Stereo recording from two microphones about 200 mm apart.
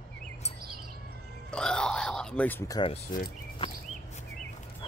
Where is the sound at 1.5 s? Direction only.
5° left (ahead or behind).